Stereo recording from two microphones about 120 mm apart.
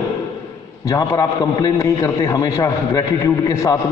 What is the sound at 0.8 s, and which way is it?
A man's voice, 25° left (ahead or behind).